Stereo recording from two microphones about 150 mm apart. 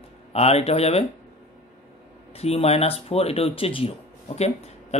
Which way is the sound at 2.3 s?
45° left (ahead or behind).